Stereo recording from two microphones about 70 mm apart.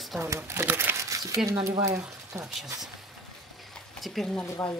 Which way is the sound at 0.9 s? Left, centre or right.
Right.